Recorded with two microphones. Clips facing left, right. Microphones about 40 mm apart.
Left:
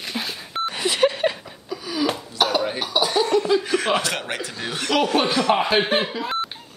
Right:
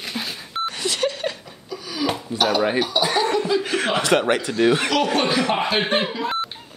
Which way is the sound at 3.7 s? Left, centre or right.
Right.